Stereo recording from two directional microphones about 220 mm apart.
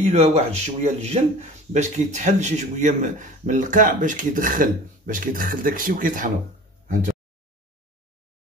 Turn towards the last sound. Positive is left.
turn(degrees=-35)  # may be behind; listen again after turning